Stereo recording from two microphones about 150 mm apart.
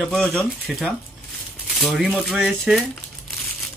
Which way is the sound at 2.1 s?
10° left (ahead or behind).